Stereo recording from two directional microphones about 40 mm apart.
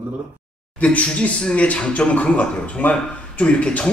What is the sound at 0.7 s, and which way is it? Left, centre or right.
Speech, left.